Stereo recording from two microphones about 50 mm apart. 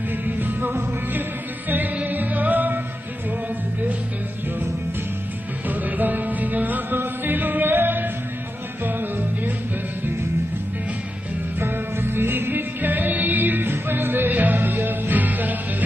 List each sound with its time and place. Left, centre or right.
0.3 s music: right
2.0 s music: right
5.7 s music: right
11.6 s music: right